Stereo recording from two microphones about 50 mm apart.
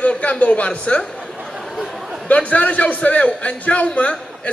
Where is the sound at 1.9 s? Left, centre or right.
Centre.